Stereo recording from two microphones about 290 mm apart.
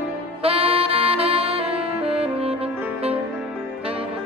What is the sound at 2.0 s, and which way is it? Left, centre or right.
Music, centre.